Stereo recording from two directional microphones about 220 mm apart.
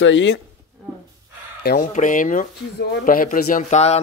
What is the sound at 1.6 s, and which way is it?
A man's voice, 40° left (ahead or behind).